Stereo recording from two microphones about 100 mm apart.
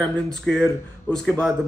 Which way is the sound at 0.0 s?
10° left (ahead or behind).